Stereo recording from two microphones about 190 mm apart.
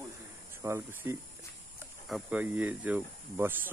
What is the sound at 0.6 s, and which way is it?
Speech, 10° right (ahead or behind).